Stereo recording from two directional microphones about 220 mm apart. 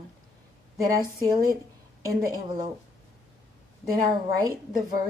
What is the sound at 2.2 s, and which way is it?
Speech, 15° right (ahead or behind).